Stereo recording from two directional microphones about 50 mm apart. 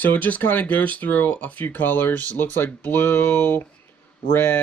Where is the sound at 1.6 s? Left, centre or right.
Left.